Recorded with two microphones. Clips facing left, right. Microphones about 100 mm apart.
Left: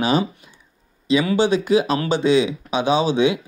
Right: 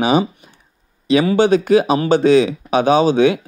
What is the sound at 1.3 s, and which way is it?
Speech, 50° right (ahead or behind).